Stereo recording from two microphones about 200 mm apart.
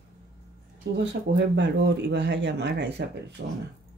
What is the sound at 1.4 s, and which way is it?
Speech, 60° right (ahead or behind).